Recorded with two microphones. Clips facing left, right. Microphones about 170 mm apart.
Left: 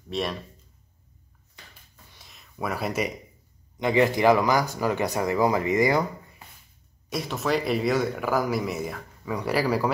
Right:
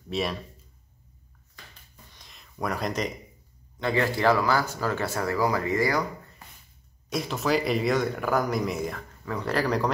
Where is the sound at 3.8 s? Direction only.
15° left (ahead or behind).